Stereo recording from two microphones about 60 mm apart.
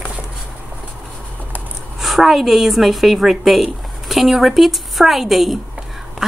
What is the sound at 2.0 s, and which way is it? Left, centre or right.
A woman's voice, centre.